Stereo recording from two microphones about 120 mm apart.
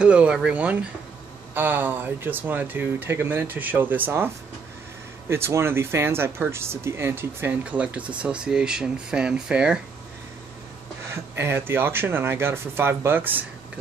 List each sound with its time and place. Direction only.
0.0 s speech: 10° right (ahead or behind)
5.3 s speech: 20° right (ahead or behind)
11.1 s speech: 20° right (ahead or behind)